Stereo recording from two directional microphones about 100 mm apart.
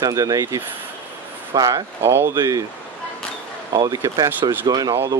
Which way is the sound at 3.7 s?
40° right (ahead or behind).